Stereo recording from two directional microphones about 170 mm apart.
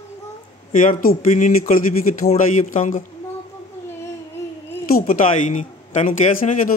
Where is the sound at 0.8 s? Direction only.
50° left (ahead or behind).